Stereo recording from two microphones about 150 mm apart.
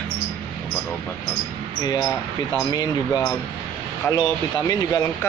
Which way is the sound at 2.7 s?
25° left (ahead or behind).